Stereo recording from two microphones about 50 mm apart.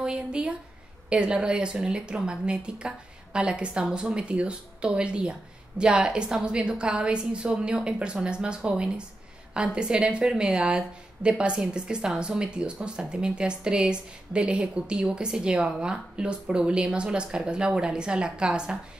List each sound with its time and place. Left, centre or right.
0.0 s speech: centre